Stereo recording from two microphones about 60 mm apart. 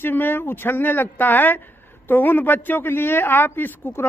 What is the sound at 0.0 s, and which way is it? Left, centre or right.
Speech, left.